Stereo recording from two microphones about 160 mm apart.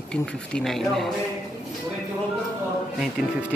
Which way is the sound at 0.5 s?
Centre (ahead or behind).